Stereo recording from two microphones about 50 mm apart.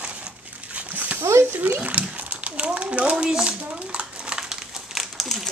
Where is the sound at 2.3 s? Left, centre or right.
Right.